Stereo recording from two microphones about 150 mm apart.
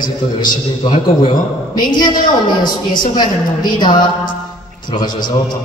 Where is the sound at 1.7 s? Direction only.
30° left (ahead or behind).